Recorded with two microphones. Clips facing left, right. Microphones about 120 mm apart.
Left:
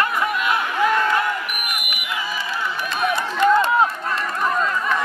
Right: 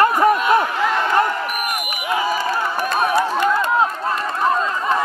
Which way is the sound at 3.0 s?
40° right (ahead or behind).